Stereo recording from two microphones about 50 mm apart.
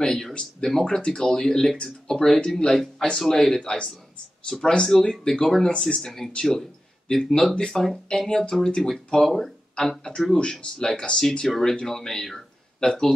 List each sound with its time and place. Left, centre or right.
0.0 s speech: centre
9.2 s speech: centre
9.8 s speech: centre